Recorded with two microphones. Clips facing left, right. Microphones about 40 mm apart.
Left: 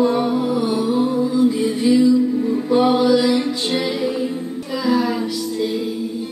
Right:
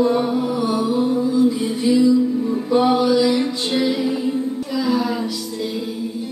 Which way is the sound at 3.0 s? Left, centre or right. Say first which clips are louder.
Left 1 dB; left.